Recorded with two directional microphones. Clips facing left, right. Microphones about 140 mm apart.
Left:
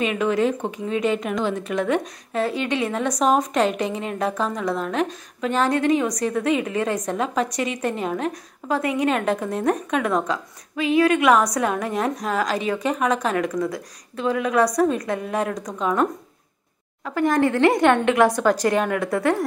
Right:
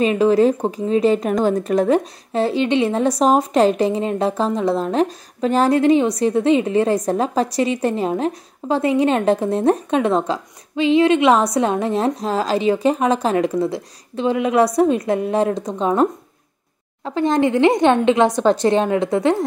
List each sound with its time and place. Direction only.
0.0 s speech: 35° right (ahead or behind)